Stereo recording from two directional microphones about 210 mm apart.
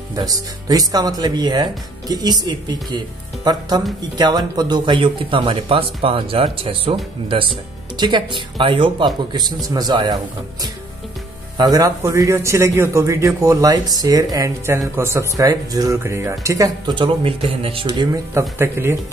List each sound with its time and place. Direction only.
0.1 s a man's voice: 15° right (ahead or behind)